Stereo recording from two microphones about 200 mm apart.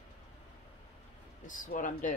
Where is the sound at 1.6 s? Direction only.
40° left (ahead or behind).